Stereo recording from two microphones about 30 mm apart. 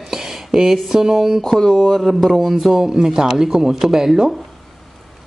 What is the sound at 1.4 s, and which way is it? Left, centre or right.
Speech, centre.